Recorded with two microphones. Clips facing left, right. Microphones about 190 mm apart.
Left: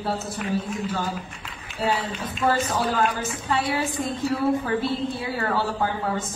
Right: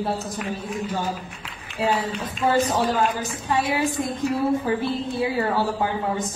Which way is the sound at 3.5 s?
15° right (ahead or behind).